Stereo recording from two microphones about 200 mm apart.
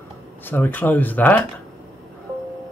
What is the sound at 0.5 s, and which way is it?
Speech, 10° left (ahead or behind).